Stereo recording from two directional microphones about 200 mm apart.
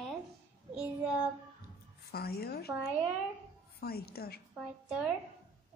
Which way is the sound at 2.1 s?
50° left (ahead or behind).